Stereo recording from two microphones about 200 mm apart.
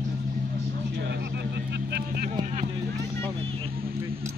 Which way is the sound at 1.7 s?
55° right (ahead or behind).